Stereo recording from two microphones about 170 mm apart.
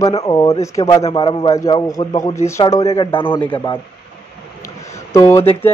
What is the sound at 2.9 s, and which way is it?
Speech, 30° left (ahead or behind).